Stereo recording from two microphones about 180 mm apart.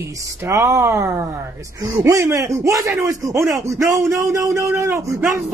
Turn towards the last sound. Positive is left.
turn(degrees=-15)  # may be behind; listen again after turning